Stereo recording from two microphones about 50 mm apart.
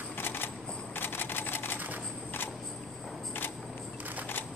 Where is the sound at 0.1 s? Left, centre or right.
Left.